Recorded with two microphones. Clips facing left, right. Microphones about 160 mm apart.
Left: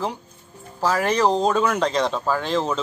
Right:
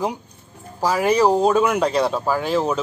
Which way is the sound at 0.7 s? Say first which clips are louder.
Right 3 dB; 10° right (ahead or behind).